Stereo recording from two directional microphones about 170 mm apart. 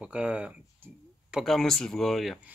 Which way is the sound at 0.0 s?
5° right (ahead or behind).